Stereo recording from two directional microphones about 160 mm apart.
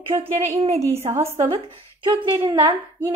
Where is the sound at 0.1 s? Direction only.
20° right (ahead or behind).